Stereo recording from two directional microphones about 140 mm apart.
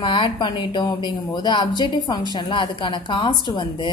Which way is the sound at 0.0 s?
35° left (ahead or behind).